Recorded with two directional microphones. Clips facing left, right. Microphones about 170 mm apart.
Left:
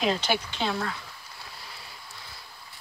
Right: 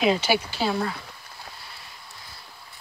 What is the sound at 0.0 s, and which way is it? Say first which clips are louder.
Speech: right 4 dB; 5° right (ahead or behind).